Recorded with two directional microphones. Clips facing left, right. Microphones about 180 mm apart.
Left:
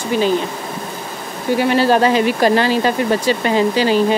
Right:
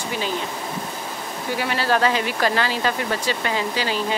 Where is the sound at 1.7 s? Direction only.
20° left (ahead or behind).